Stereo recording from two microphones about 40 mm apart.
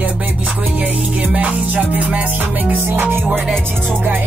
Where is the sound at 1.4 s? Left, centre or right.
Right.